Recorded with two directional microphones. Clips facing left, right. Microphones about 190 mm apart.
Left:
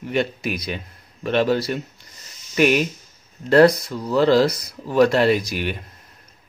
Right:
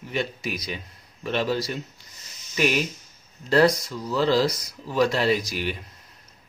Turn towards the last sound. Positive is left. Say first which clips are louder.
# left 4 dB
turn(degrees=60)  # may be behind; listen again after turning